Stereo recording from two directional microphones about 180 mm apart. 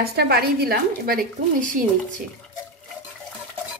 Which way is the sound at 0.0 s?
60° right (ahead or behind).